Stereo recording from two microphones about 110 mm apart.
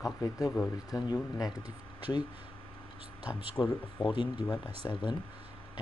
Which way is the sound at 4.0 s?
50° left (ahead or behind).